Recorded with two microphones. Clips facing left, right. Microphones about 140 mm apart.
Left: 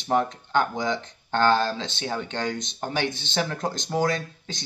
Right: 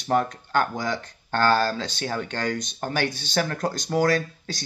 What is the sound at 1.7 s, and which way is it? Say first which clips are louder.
Speech: right 2 dB; 45° right (ahead or behind).